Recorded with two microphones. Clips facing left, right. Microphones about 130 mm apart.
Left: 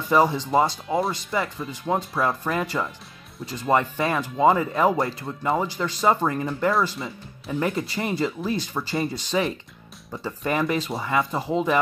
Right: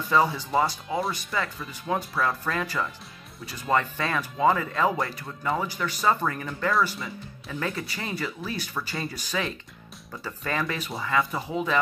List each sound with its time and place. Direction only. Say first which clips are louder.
0.1 s speech: left 4 dB; 20° left (ahead or behind)
0.8 s speech: left 4 dB; centre (ahead or behind)
1.3 s speech: left 4 dB; 25° left (ahead or behind)